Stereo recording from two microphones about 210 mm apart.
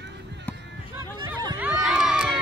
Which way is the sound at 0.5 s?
5° left (ahead or behind).